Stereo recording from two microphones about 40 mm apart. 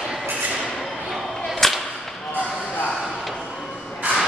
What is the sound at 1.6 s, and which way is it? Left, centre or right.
Whip, centre.